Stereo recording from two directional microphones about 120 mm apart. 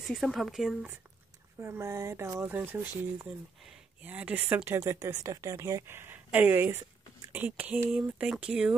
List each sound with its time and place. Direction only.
0.0 s speech: centre (ahead or behind)
1.6 s speech: 20° right (ahead or behind)
4.0 s speech: 15° right (ahead or behind)